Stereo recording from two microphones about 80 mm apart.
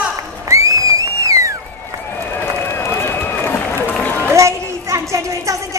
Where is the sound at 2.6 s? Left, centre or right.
Left.